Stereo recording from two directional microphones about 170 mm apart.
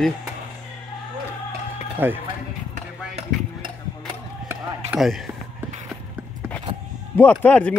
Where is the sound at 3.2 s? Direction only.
30° right (ahead or behind).